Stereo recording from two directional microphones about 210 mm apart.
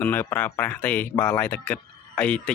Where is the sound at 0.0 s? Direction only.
10° left (ahead or behind).